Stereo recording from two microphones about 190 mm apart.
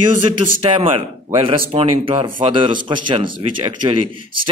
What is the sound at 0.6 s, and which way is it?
A man's voice, 25° right (ahead or behind).